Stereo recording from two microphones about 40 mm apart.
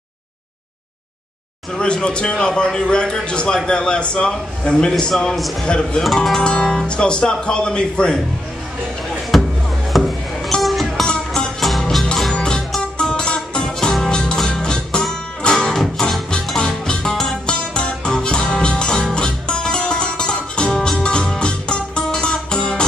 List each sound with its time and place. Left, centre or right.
1.8 s a man's voice: left
5.3 s a man's voice: centre
5.7 s a man's voice: left
9.3 s music: centre
9.9 s a sound: centre
10.6 s music: centre
12.4 s music: centre